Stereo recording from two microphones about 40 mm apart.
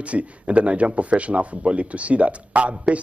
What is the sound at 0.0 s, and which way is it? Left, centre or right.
A man's voice, right.